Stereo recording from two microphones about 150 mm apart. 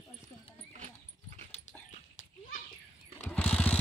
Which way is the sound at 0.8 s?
50° right (ahead or behind).